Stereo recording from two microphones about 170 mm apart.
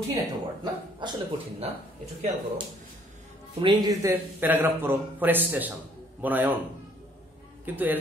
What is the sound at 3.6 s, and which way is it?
A man's voice, 25° right (ahead or behind).